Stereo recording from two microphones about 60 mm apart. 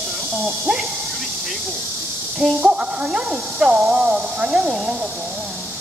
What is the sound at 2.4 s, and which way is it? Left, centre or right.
Speech, centre.